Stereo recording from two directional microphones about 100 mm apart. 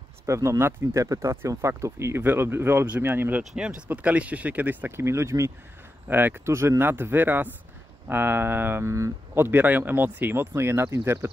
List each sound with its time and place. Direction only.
0.3 s speech: 25° right (ahead or behind)